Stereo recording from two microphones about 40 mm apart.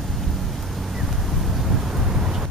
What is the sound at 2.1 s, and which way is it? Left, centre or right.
Vehicle, centre.